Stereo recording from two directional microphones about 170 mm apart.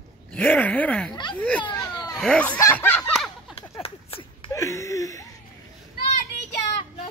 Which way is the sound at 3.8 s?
30° left (ahead or behind).